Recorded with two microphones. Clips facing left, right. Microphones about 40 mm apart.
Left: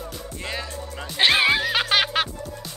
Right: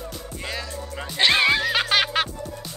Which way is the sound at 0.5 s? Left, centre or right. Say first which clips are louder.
Even; centre.